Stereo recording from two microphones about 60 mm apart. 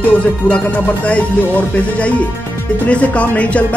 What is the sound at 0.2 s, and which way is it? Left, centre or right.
Speech, left.